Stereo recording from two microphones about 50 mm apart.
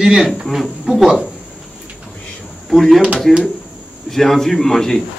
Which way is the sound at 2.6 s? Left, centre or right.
Centre.